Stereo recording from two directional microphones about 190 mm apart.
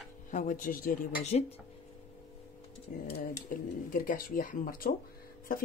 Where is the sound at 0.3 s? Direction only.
45° left (ahead or behind).